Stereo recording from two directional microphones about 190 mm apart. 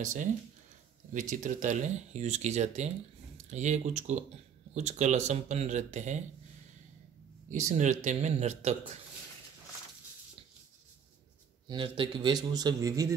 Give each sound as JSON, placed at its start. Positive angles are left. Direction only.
{"t": 0.0, "sound": "speech", "side_deg": -40}
{"t": 1.3, "sound": "speech", "side_deg": -40}
{"t": 7.4, "sound": "speech", "side_deg": -40}
{"t": 11.6, "sound": "a man's voice", "side_deg": -25}